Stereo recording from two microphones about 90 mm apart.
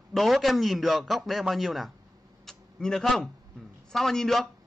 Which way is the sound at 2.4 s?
5° left (ahead or behind).